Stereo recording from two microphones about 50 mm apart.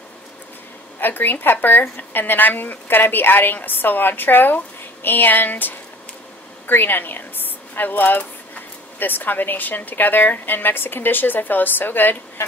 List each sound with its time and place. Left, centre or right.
0.9 s speech: left